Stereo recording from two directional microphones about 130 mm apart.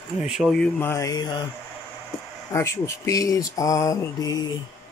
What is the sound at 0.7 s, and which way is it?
Mantra, 20° left (ahead or behind).